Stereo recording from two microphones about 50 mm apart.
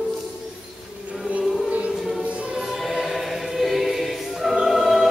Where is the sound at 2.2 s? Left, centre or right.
Right.